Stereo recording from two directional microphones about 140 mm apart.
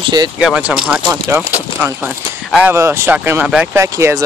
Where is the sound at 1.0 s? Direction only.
20° right (ahead or behind).